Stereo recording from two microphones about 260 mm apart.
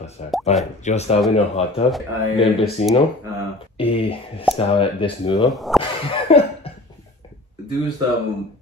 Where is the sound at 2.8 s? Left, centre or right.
Left.